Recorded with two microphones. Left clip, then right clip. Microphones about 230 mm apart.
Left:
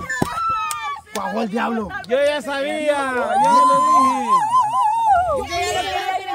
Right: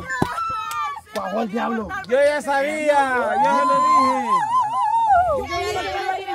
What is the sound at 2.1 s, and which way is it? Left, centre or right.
Speech, centre.